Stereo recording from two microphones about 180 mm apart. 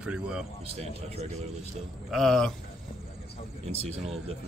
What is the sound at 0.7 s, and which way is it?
Speech, 35° right (ahead or behind).